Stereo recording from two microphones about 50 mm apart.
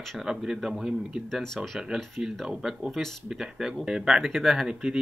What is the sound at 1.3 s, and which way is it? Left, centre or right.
Speech, centre.